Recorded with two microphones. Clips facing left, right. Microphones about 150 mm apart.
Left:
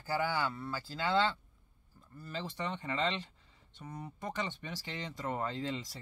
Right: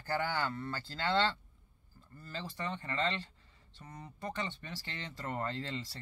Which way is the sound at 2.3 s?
20° left (ahead or behind).